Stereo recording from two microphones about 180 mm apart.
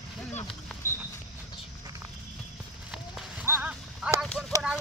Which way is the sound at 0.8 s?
15° left (ahead or behind).